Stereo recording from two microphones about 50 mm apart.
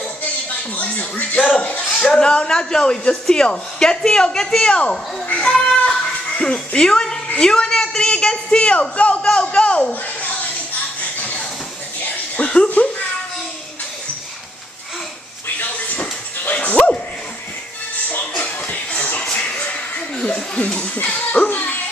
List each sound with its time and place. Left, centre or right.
0.7 s speech: left
5.9 s music: centre
7.3 s speech: centre
9.3 s a sound: left
11.0 s a sound: left
15.4 s a sound: left
16.0 s music: left
16.7 s dog: left
18.4 s music: left
20.2 s chuckle: centre
20.9 s dog: left